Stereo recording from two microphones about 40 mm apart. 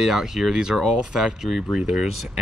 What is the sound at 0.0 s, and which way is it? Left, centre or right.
Speech, centre.